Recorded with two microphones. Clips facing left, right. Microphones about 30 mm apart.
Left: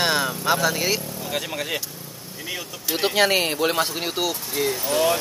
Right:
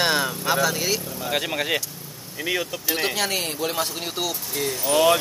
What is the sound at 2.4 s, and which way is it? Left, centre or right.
Speech, right.